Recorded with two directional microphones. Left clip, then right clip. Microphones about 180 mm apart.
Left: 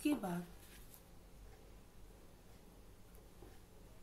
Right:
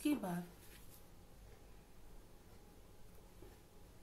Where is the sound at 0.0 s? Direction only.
15° right (ahead or behind).